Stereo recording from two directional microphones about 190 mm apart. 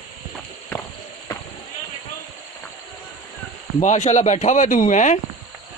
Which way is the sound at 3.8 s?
40° left (ahead or behind).